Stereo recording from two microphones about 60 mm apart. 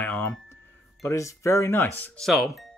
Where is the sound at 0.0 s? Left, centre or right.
Left.